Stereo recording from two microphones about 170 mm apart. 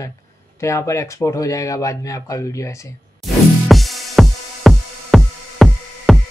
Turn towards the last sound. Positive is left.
turn(degrees=0)  # may be behind; listen again after turning